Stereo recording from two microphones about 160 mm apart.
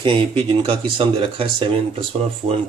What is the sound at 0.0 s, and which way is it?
Speech, 30° right (ahead or behind).